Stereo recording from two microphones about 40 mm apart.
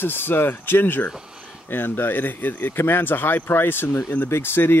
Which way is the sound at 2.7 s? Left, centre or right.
Left.